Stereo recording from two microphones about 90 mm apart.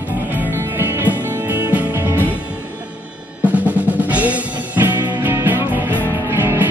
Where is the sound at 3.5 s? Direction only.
15° right (ahead or behind).